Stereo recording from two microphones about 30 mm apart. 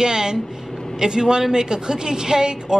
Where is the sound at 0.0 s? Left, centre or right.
Right.